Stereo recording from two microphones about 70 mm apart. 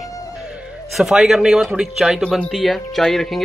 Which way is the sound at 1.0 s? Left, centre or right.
Centre.